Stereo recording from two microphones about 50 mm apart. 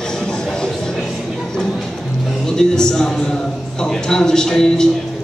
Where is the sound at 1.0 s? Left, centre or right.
Centre.